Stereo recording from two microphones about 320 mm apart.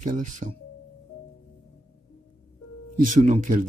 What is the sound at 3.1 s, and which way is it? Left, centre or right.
Speech, right.